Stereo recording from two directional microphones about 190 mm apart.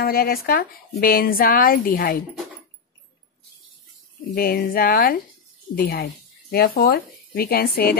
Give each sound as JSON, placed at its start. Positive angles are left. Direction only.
{"t": 0.0, "sound": "speech", "side_deg": 55}
{"t": 4.4, "sound": "speech", "side_deg": 50}